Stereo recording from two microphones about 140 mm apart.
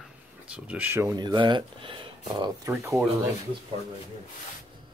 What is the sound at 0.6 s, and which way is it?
Speech, 10° right (ahead or behind).